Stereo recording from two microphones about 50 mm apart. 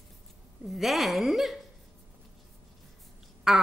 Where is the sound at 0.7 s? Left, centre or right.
Centre.